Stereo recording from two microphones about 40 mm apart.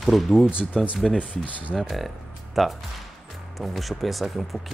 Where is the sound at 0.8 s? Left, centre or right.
Centre.